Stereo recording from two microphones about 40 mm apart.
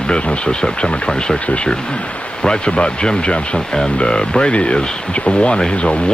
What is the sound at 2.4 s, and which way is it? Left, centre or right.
Speech, left.